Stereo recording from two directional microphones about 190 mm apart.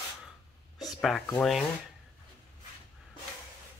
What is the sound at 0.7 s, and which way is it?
Speech, centre (ahead or behind).